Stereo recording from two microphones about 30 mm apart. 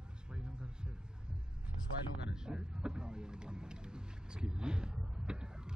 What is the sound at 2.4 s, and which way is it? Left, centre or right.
Vehicle, right.